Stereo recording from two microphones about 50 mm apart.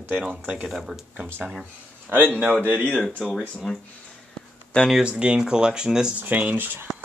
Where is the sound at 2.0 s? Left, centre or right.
Right.